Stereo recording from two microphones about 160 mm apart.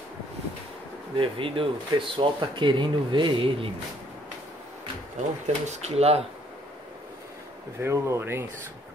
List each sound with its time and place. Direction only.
1.1 s speech: 30° right (ahead or behind)
5.7 s speech: 40° right (ahead or behind)
7.8 s speech: 15° right (ahead or behind)